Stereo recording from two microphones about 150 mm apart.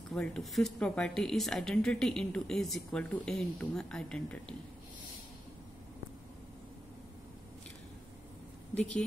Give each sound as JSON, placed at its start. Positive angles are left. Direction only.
{"t": 0.1, "sound": "speech", "side_deg": 5}